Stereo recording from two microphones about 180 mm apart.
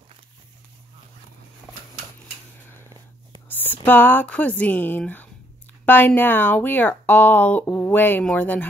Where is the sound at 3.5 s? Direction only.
10° left (ahead or behind).